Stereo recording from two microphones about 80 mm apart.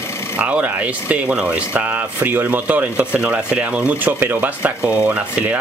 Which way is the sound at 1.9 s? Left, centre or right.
Right.